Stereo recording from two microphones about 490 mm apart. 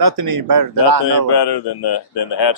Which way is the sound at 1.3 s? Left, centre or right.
Left.